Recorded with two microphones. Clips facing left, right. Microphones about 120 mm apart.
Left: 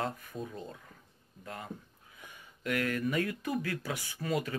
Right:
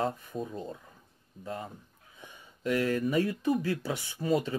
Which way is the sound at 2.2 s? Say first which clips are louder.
Right 2 dB; 25° right (ahead or behind).